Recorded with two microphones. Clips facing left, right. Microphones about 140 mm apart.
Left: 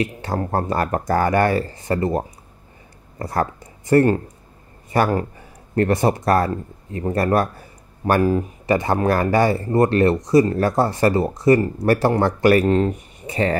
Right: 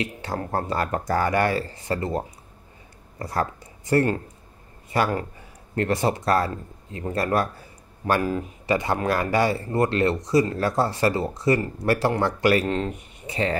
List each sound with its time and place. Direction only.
0.0 s speech: 45° left (ahead or behind)
3.2 s speech: 55° left (ahead or behind)
8.2 s speech: 35° left (ahead or behind)
8.6 s speech: 45° left (ahead or behind)